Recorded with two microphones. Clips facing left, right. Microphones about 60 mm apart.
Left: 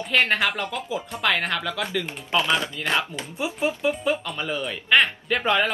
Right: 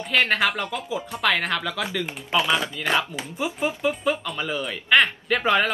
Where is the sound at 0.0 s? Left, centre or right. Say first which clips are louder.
Even; centre.